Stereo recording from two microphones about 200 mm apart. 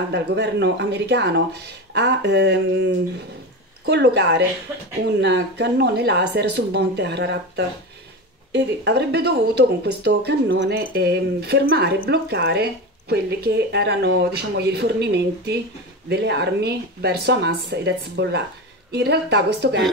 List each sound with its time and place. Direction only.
0.1 s speech: 60° right (ahead or behind)
4.7 s speech: 10° right (ahead or behind)
5.2 s speech: 60° right (ahead or behind)